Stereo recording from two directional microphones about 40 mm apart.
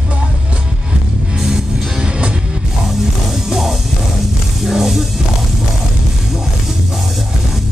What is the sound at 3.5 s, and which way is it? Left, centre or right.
Music, centre.